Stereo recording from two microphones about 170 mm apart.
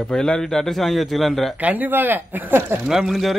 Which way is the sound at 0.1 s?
5° left (ahead or behind).